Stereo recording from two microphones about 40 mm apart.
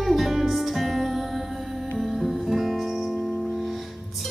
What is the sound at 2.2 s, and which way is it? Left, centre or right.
Music, centre.